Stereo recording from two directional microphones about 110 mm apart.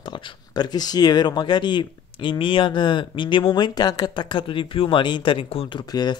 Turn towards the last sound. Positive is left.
turn(degrees=40)  # may be behind; listen again after turning